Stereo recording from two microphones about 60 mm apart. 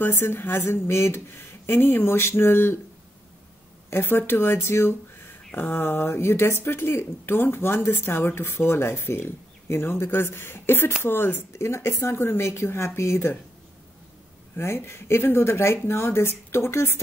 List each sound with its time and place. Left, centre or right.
0.0 s a woman's voice: left
3.9 s a woman's voice: left
11.5 s speech: left
14.6 s speech: left